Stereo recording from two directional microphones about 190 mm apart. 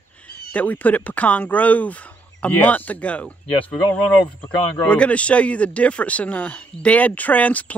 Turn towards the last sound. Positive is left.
turn(degrees=10)  # may be behind; listen again after turning